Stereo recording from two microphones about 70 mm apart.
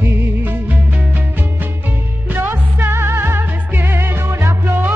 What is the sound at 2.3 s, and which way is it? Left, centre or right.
Music, right.